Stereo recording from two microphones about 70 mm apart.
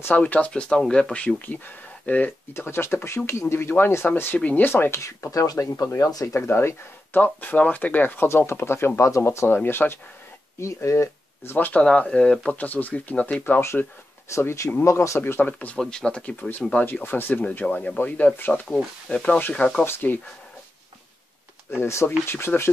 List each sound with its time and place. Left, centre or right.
0.0 s speech: left
0.5 s speech: centre
2.5 s speech: left
5.0 s speech: left
7.3 s speech: left
9.7 s speech: left
10.6 s speech: left
11.5 s speech: left
11.8 s speech: centre
13.4 s speech: left
15.4 s speech: left
15.8 s speech: centre
19.8 s speech: left
21.6 s speech: left